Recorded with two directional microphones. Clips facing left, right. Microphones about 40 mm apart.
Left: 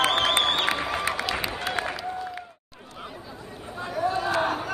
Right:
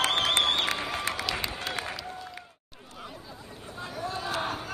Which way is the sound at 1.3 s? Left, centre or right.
Centre.